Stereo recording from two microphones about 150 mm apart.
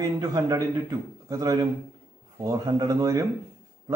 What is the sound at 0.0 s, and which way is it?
A man's voice, 25° right (ahead or behind).